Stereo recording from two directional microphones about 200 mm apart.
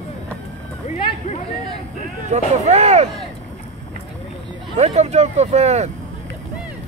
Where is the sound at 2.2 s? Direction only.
35° right (ahead or behind).